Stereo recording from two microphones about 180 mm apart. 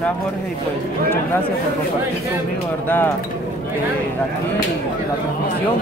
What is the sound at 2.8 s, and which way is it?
Speech, 10° left (ahead or behind).